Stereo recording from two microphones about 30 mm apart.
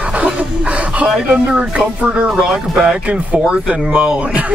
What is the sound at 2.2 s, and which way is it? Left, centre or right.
Speech, centre.